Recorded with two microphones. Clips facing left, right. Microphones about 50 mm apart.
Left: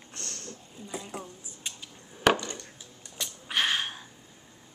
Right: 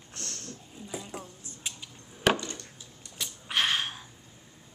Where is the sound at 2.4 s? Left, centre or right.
Centre.